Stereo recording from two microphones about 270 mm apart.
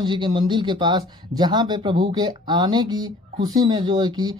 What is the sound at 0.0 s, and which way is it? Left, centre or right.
Speech, centre.